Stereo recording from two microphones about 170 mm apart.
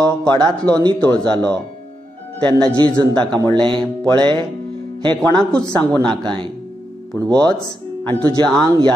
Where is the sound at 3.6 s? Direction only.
30° right (ahead or behind).